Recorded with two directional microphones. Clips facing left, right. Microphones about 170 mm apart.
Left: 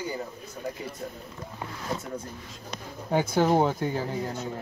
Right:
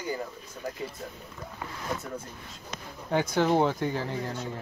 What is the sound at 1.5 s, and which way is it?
Speech, 20° left (ahead or behind).